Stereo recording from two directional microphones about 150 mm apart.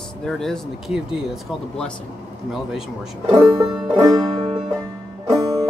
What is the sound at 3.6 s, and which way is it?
Music, 30° right (ahead or behind).